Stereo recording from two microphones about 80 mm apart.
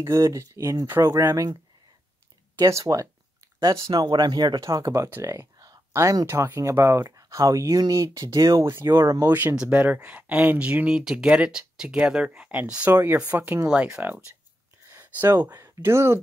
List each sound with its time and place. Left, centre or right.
0.0 s speech: right
1.2 s speech: right
2.6 s speech: right
3.9 s speech: right
4.6 s speech: right
6.2 s speech: right
9.2 s speech: right
12.9 s speech: right
13.3 s speech: centre
15.1 s speech: right